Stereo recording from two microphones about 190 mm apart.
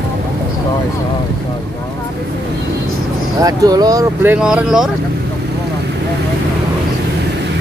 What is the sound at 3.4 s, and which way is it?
Speech, 20° right (ahead or behind).